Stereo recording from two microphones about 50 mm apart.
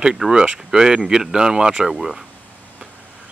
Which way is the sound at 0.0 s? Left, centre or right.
Centre.